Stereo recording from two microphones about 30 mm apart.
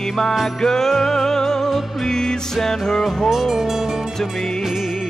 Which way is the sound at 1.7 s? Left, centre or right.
Centre.